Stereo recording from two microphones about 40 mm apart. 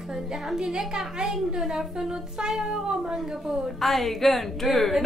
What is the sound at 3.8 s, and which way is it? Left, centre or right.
A woman's voice, centre.